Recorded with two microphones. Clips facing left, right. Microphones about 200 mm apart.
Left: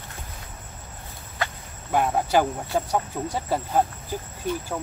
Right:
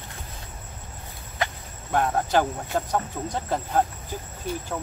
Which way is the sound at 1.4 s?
20° right (ahead or behind).